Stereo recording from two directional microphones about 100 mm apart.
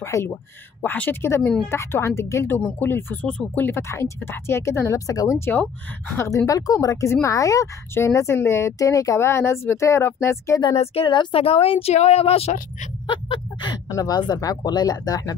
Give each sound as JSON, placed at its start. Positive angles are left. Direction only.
{"t": 0.0, "sound": "speech", "side_deg": 30}
{"t": 5.4, "sound": "speech", "side_deg": 15}
{"t": 6.1, "sound": "a woman's voice", "side_deg": 30}
{"t": 11.1, "sound": "a woman's voice", "side_deg": 55}
{"t": 11.4, "sound": "speech", "side_deg": 65}
{"t": 13.8, "sound": "a woman's voice", "side_deg": 35}